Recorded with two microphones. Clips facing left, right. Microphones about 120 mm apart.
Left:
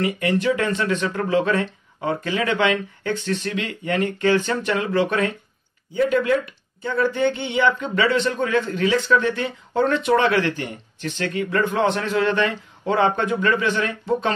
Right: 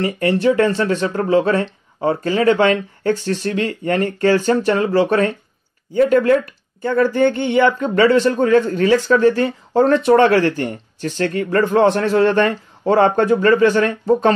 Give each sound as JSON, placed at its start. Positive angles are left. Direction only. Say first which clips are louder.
{"t": 0.0, "sound": "speech", "louder": "right 5 dB", "side_deg": -35}